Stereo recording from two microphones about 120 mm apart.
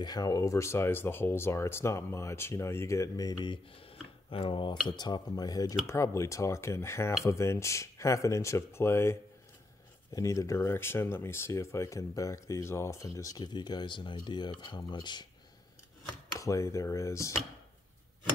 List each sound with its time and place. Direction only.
0.0 s speech: 35° left (ahead or behind)
3.7 s speech: 50° left (ahead or behind)
16.3 s speech: 25° left (ahead or behind)